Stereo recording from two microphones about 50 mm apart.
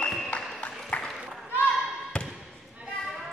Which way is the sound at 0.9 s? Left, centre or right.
Left.